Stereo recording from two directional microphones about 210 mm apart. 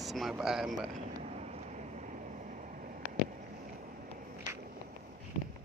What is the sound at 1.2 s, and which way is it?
Vehicle, 30° right (ahead or behind).